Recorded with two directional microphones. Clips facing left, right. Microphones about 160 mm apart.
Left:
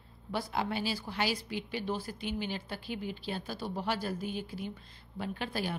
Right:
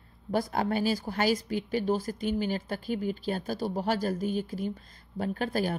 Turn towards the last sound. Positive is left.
turn(degrees=-45)  # may be behind; listen again after turning